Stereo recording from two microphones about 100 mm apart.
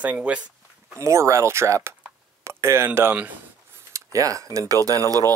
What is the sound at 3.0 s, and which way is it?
Speech, 20° right (ahead or behind).